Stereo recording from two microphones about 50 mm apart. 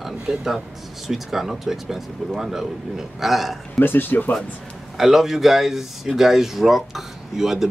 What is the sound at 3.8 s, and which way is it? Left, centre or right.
Speech, left.